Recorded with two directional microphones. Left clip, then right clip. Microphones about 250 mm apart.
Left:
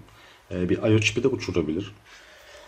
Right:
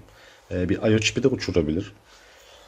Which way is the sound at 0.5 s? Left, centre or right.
Right.